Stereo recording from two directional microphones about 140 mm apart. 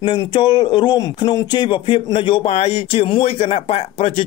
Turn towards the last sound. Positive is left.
turn(degrees=45)  # may be behind; listen again after turning